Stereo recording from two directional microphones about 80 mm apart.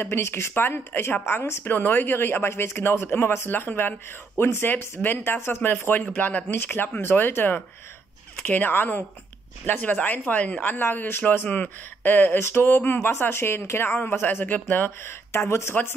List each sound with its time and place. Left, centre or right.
0.0 s speech: left